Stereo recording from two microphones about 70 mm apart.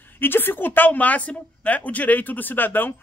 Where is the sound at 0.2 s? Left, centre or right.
Left.